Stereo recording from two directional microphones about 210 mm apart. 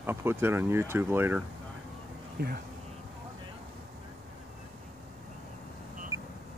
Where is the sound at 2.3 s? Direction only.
50° right (ahead or behind).